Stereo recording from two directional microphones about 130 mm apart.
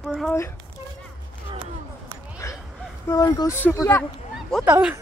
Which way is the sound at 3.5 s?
15° left (ahead or behind).